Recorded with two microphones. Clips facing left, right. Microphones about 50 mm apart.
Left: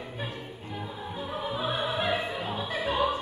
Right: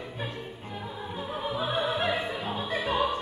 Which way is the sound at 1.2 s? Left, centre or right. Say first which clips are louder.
Right 1 dB; right.